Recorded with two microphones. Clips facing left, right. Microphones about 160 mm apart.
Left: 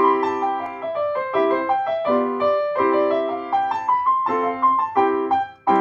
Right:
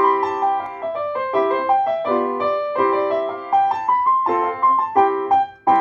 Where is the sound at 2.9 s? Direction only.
40° right (ahead or behind).